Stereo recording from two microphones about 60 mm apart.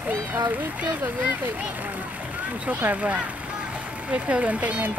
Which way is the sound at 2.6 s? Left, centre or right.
Right.